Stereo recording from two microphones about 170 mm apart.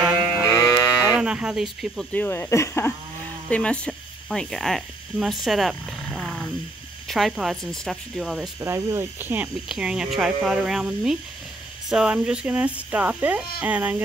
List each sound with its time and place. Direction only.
0.0 s livestock: 5° right (ahead or behind)
0.5 s cattle: 20° left (ahead or behind)
1.0 s a sound: 5° right (ahead or behind)
2.1 s speech: 10° left (ahead or behind)
8.5 s speech: 15° right (ahead or behind)